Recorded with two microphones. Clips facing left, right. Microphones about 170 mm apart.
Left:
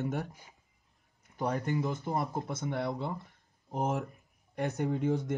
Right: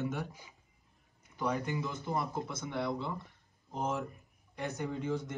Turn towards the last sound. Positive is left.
turn(degrees=55)  # may be behind; listen again after turning